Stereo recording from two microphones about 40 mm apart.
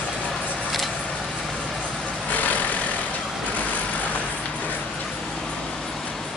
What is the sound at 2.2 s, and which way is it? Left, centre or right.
Vehicle, left.